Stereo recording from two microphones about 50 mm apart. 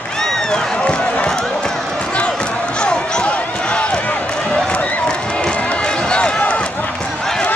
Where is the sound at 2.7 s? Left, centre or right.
Centre.